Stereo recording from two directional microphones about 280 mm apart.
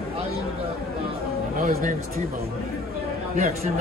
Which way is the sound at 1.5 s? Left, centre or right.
Right.